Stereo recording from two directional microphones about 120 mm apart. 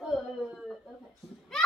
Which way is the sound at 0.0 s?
Centre (ahead or behind).